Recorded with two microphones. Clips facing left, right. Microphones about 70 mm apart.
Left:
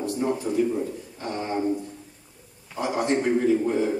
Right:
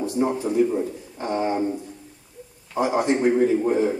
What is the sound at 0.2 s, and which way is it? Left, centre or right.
Speech, right.